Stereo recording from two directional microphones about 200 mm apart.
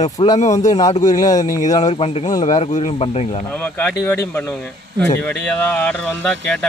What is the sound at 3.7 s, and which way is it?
Speech, 5° left (ahead or behind).